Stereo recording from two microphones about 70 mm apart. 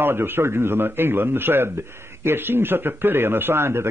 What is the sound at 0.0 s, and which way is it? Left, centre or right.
A man's voice, right.